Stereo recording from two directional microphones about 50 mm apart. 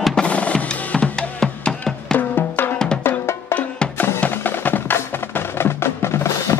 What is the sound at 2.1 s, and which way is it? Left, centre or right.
Drum, left.